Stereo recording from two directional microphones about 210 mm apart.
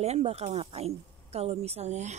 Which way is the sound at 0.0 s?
30° right (ahead or behind).